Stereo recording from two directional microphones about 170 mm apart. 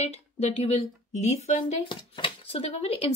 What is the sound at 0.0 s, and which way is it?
Speech, 40° left (ahead or behind).